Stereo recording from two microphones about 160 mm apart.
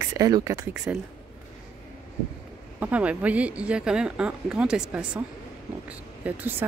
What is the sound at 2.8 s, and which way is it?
Speech, 10° right (ahead or behind).